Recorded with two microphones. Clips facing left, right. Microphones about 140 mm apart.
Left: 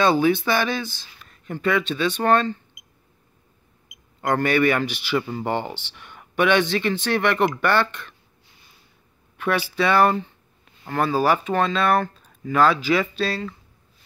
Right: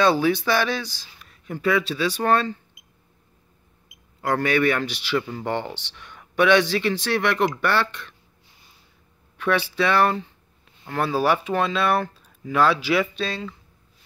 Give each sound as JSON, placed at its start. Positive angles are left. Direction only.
{"t": 0.0, "sound": "speech", "side_deg": 0}
{"t": 2.8, "sound": "a sound", "side_deg": -30}
{"t": 4.2, "sound": "speech", "side_deg": 0}
{"t": 9.4, "sound": "speech", "side_deg": 5}